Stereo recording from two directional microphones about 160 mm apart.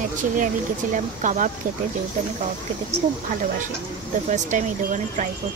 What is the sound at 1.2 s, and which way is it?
Speech, 50° right (ahead or behind).